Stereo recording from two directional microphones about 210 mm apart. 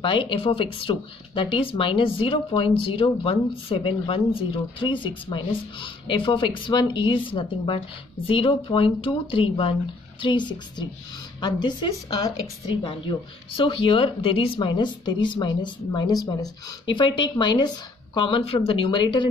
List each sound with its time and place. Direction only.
0.0 s speech: 25° left (ahead or behind)